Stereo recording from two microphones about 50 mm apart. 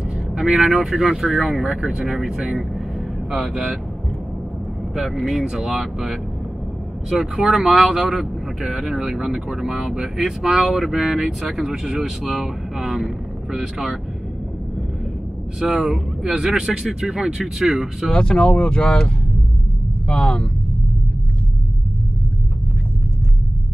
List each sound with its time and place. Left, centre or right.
0.3 s speech: centre
0.7 s speech: centre
5.1 s speech: centre
15.7 s speech: centre
18.1 s speech: centre